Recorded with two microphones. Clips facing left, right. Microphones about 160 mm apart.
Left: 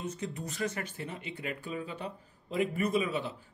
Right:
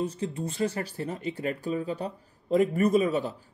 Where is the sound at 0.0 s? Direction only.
30° right (ahead or behind).